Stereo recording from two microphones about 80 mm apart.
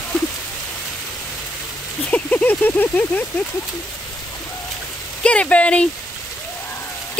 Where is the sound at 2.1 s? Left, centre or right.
Centre.